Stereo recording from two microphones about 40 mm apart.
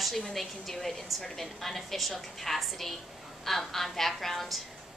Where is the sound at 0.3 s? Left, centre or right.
Centre.